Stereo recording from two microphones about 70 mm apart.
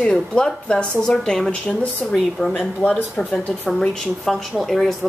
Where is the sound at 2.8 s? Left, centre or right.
Centre.